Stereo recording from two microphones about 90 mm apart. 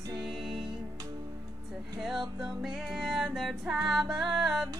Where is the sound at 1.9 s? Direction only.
5° right (ahead or behind).